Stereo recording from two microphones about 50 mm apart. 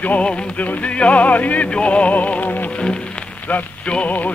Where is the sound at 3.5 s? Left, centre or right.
Left.